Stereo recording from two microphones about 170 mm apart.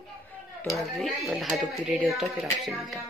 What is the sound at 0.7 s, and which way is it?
Speech, centre (ahead or behind).